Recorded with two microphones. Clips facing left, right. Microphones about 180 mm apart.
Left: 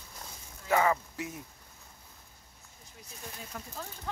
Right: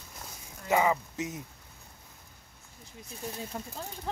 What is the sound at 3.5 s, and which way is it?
Speech, 25° right (ahead or behind).